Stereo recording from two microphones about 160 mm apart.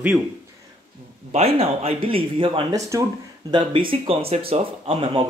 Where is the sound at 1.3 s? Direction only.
40° right (ahead or behind).